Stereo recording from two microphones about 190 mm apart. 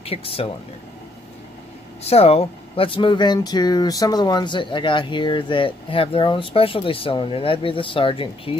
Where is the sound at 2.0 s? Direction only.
30° left (ahead or behind).